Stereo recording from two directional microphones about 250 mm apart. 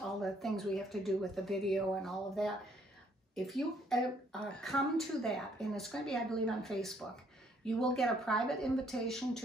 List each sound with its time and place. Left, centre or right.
0.2 s speech: centre